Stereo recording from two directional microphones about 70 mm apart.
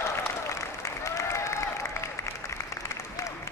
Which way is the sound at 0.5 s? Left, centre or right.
Left.